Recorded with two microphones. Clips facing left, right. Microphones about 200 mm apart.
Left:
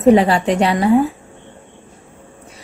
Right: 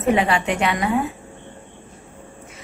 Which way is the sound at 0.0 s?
35° left (ahead or behind).